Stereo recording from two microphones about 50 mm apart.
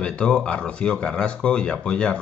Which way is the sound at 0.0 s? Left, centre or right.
Centre.